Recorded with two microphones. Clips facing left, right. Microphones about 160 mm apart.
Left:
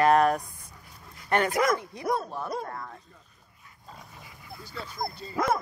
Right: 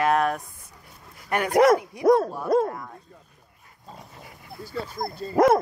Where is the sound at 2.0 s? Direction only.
90° right.